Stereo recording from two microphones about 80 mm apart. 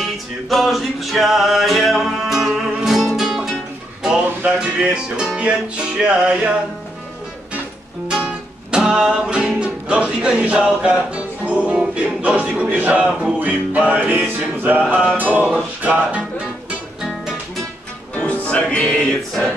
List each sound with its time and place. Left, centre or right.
0.0 s music: centre
4.5 s music: centre
8.1 s music: centre
18.1 s music: centre